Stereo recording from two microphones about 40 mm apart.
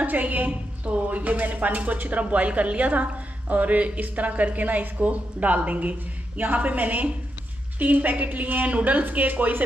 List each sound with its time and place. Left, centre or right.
0.0 s a woman's voice: right